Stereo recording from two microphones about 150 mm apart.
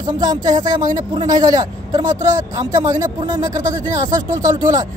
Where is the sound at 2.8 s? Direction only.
25° right (ahead or behind).